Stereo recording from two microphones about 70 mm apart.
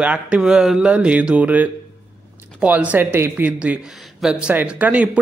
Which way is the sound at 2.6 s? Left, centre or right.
Centre.